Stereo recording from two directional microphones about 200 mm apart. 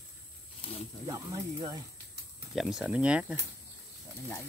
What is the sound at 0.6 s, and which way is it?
Snake, 30° left (ahead or behind).